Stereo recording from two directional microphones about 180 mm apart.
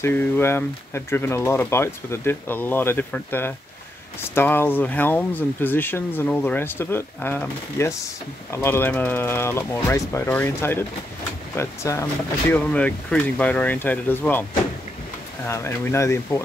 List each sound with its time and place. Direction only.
0.0 s speech: 15° left (ahead or behind)
15.4 s speech: 15° left (ahead or behind)